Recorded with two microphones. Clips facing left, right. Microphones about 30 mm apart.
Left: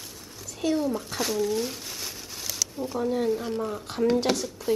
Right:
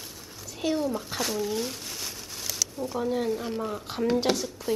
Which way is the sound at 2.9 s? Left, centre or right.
Centre.